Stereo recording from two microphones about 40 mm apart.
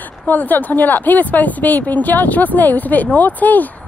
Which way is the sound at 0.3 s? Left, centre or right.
Left.